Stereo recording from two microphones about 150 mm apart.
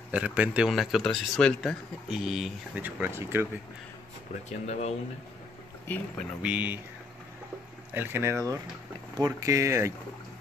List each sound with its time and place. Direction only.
0.1 s speech: 10° right (ahead or behind)
2.8 s speech: 15° right (ahead or behind)
4.5 s speech: 45° left (ahead or behind)
5.9 s speech: 15° left (ahead or behind)
6.4 s speech: 10° right (ahead or behind)
7.9 s speech: 15° right (ahead or behind)